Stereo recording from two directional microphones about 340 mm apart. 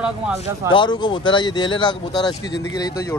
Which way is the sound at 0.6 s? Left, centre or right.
Centre.